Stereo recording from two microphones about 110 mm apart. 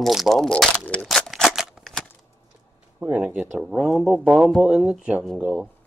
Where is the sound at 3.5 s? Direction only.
Centre (ahead or behind).